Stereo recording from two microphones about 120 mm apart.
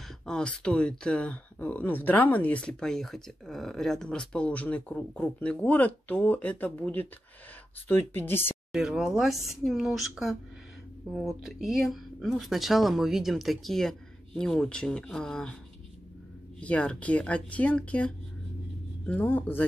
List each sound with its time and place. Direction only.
0.2 s speech: 5° left (ahead or behind)
8.7 s speech: 5° right (ahead or behind)
16.5 s speech: 10° left (ahead or behind)